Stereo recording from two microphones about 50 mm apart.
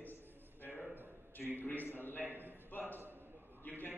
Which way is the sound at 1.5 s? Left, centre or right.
Left.